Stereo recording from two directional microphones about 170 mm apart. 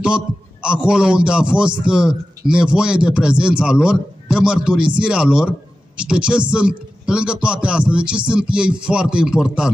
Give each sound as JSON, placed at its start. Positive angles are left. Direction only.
{"t": 0.0, "sound": "a man's voice", "side_deg": -5}